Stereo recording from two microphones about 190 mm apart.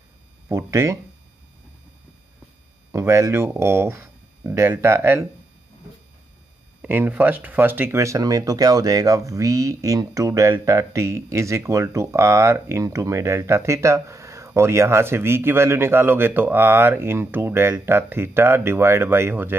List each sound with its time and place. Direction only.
0.5 s speech: 15° right (ahead or behind)
2.9 s speech: 15° right (ahead or behind)
6.8 s speech: 10° right (ahead or behind)